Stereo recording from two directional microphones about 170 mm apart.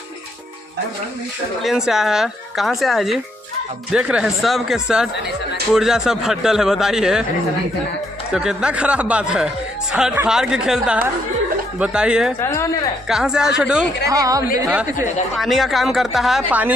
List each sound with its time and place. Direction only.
1.6 s speech: centre (ahead or behind)
8.3 s speech: 5° right (ahead or behind)
12.4 s a woman's voice: 15° left (ahead or behind)
13.1 s speech: 5° right (ahead or behind)
14.0 s a woman's voice: 20° right (ahead or behind)
14.7 s speech: 10° right (ahead or behind)